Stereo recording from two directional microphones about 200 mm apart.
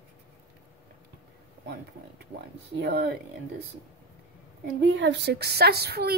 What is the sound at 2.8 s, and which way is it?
Speech, 55° right (ahead or behind).